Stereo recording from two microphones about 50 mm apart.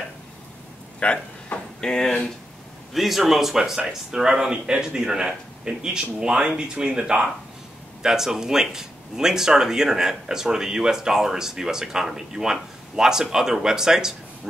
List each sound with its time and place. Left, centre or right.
0.9 s speech: left
2.9 s speech: centre